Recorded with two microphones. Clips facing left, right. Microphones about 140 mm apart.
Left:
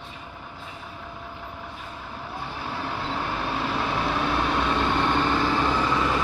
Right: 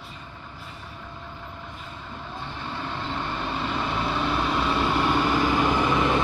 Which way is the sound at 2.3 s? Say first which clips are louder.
Left 2 dB; 10° left (ahead or behind).